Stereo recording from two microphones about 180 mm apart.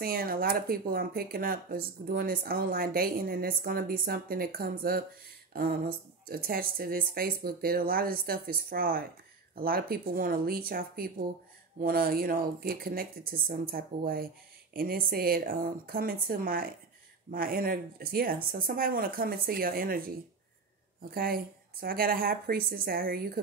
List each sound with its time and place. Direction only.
0.0 s speech: 55° right (ahead or behind)